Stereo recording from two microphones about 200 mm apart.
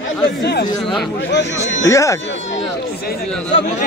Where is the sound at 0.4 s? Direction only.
55° left (ahead or behind).